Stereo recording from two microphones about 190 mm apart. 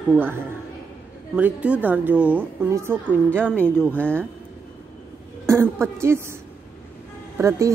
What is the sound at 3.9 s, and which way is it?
Speech, 5° left (ahead or behind).